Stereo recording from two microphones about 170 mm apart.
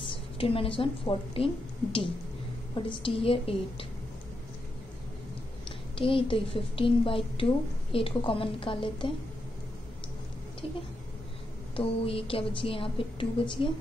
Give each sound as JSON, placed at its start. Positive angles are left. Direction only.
{"t": 0.4, "sound": "a woman's voice", "side_deg": 35}
{"t": 2.7, "sound": "a woman's voice", "side_deg": 30}
{"t": 5.7, "sound": "a woman's voice", "side_deg": 30}
{"t": 11.7, "sound": "a woman's voice", "side_deg": 35}